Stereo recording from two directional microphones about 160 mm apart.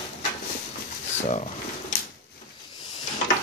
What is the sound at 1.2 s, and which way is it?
Speech, 45° left (ahead or behind).